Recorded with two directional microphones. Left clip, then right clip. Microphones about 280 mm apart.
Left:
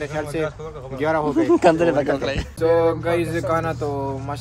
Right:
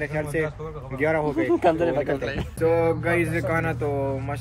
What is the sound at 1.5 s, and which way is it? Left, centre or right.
Speech, left.